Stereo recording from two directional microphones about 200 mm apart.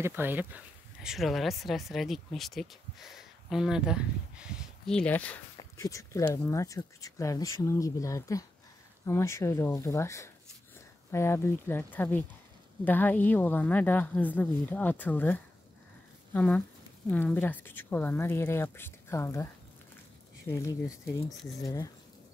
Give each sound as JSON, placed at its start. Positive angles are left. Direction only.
{"t": 0.0, "sound": "speech", "side_deg": -10}